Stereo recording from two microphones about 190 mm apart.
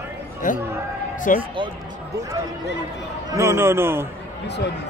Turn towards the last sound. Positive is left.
turn(degrees=-10)  # may be behind; listen again after turning